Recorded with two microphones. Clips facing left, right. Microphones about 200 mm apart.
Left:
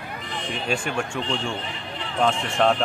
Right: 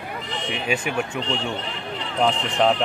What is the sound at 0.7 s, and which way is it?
Speech, 5° right (ahead or behind).